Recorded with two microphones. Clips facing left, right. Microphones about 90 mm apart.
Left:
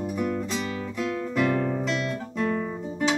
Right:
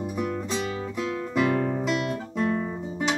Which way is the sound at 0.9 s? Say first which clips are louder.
Even; 15° right (ahead or behind).